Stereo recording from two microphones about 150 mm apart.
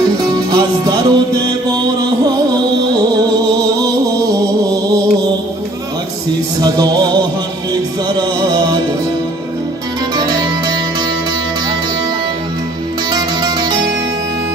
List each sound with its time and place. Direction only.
0.2 s music: 25° right (ahead or behind)
3.8 s music: 25° right (ahead or behind)
6.6 s music: 25° right (ahead or behind)
8.2 s music: 25° right (ahead or behind)
10.1 s music: 25° right (ahead or behind)
13.1 s music: 25° right (ahead or behind)